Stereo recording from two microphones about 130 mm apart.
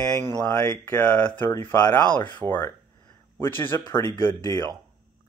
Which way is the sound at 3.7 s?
25° left (ahead or behind).